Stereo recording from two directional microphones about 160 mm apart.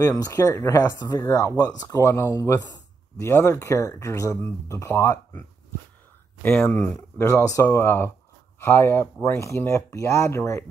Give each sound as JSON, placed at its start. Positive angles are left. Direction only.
{"t": 0.0, "sound": "speech", "side_deg": 20}
{"t": 6.4, "sound": "speech", "side_deg": 15}